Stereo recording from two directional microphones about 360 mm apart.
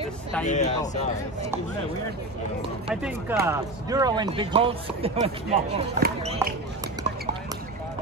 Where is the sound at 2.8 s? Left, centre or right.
Centre.